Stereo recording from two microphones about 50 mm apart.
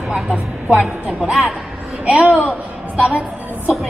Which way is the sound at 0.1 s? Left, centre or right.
Right.